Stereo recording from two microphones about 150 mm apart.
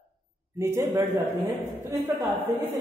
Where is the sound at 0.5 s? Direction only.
15° right (ahead or behind).